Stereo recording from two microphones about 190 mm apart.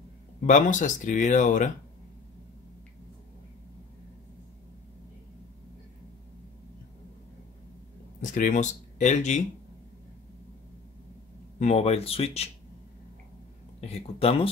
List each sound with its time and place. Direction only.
0.4 s speech: 40° left (ahead or behind)
8.2 s speech: 40° left (ahead or behind)
11.6 s speech: 35° left (ahead or behind)
13.7 s speech: 30° left (ahead or behind)